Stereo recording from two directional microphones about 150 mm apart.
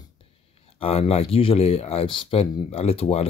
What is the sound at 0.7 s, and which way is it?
Speech, 40° left (ahead or behind).